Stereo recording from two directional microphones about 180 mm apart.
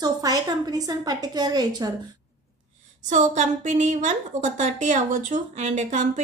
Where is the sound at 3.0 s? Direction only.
45° right (ahead or behind).